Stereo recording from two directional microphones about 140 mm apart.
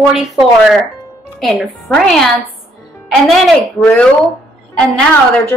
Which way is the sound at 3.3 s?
5° left (ahead or behind).